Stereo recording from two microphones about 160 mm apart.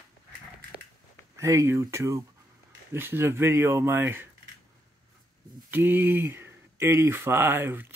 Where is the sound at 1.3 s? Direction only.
20° right (ahead or behind).